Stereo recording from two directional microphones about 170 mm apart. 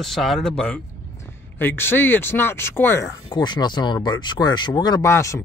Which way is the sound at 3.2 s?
25° left (ahead or behind).